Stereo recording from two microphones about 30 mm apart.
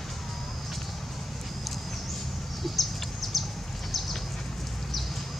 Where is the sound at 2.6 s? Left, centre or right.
Centre.